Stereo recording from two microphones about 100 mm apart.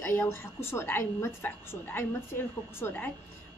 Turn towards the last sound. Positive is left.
turn(degrees=20)  # may be behind; listen again after turning